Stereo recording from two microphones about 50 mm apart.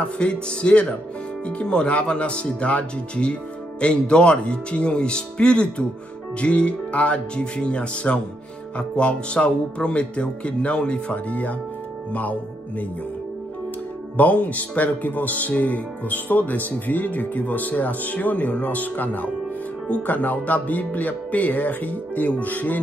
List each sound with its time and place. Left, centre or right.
0.0 s speech: centre
14.1 s speech: left